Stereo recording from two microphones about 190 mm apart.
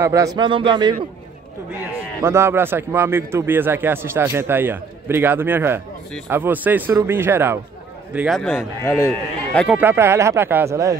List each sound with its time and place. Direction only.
0.0 s speech: 15° right (ahead or behind)
2.2 s a man's voice: 15° right (ahead or behind)
8.4 s speech: 5° left (ahead or behind)
9.8 s a man's voice: 15° right (ahead or behind)